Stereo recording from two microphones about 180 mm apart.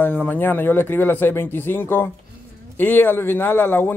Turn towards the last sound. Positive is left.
turn(degrees=10)  # may be behind; listen again after turning